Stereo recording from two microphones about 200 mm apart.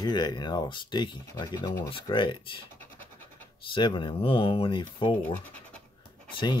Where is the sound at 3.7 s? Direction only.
25° left (ahead or behind).